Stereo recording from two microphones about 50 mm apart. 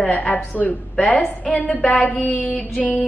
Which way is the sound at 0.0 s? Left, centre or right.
Left.